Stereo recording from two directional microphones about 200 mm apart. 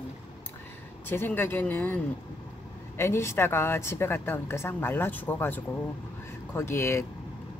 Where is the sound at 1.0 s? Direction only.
10° left (ahead or behind).